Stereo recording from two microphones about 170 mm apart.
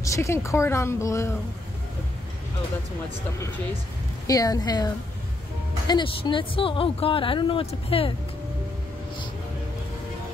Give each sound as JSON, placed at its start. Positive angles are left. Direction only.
{"t": 0.0, "sound": "a woman's voice", "side_deg": 15}
{"t": 4.3, "sound": "a woman's voice", "side_deg": 20}